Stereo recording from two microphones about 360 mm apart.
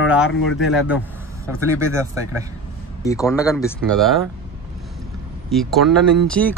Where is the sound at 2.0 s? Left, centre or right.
Centre.